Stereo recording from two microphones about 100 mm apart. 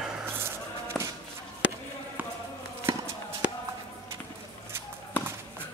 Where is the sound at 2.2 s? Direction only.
15° right (ahead or behind).